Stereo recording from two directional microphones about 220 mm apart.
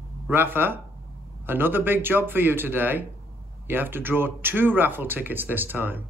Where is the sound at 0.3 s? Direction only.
10° right (ahead or behind).